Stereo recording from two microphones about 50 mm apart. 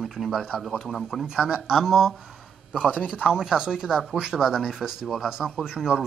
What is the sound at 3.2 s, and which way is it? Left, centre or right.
Speech, centre.